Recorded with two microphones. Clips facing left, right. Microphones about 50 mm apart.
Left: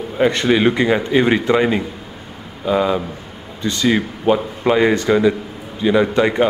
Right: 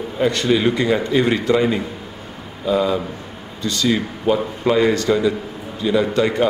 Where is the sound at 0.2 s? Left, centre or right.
Left.